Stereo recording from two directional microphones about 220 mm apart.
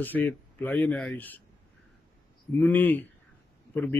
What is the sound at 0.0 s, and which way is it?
Speech, 10° left (ahead or behind).